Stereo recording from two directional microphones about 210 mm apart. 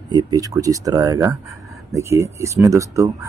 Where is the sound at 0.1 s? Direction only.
20° right (ahead or behind).